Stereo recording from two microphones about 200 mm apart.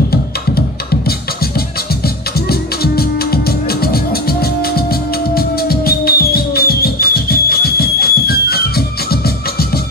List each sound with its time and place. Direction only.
2.8 s music: 50° left (ahead or behind)